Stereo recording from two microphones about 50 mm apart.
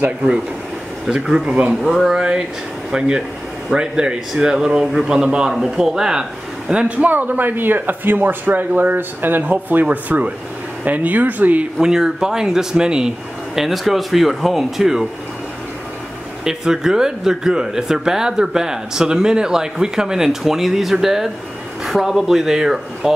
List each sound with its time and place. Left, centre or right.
1.1 s speech: centre
1.8 s speech: centre
2.0 s speech: centre
6.7 s speech: right
11.8 s speech: centre
13.6 s speech: centre
16.4 s speech: centre